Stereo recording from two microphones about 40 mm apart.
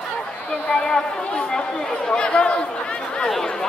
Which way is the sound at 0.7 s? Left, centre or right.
Centre.